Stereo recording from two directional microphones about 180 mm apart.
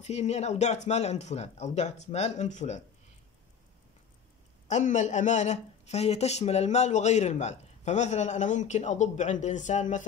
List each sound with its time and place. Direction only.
0.0 s speech: 40° left (ahead or behind)
4.6 s speech: 40° left (ahead or behind)